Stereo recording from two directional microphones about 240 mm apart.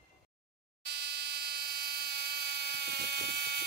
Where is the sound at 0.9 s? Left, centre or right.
Right.